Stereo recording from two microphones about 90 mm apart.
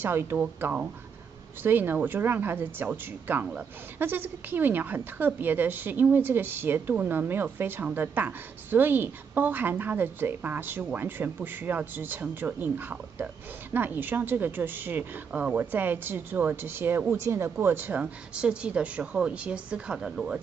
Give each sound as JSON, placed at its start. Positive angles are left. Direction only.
{"t": 0.0, "sound": "speech", "side_deg": -25}